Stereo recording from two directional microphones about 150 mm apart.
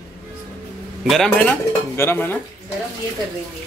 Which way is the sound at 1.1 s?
5° left (ahead or behind).